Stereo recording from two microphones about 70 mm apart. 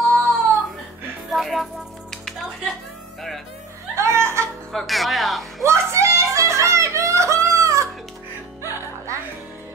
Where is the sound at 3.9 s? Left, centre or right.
Right.